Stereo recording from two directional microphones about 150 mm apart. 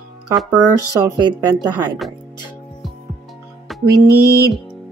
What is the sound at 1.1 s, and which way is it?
Speech, 25° right (ahead or behind).